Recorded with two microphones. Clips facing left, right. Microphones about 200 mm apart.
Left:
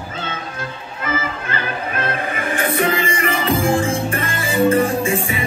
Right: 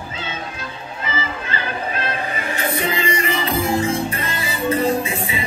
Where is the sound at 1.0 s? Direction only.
50° left (ahead or behind).